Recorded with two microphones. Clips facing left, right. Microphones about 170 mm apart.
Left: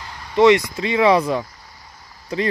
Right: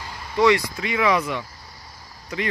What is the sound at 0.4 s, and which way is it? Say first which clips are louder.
Speech: left 5 dB; 25° left (ahead or behind).